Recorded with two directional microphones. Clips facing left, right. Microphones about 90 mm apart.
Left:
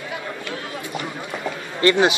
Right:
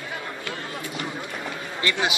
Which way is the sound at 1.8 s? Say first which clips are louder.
Left 9 dB; 40° left (ahead or behind).